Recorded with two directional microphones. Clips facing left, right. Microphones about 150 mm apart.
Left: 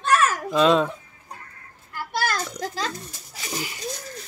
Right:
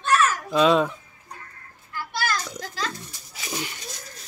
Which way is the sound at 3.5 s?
5° left (ahead or behind).